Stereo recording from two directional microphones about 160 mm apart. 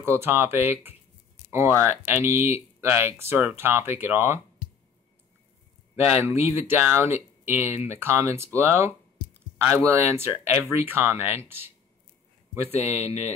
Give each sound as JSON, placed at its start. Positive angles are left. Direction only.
{"t": 0.0, "sound": "speech", "side_deg": -15}
{"t": 6.2, "sound": "speech", "side_deg": -15}
{"t": 12.7, "sound": "speech", "side_deg": -15}